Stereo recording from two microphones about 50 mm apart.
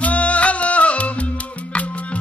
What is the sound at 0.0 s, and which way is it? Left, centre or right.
Music, left.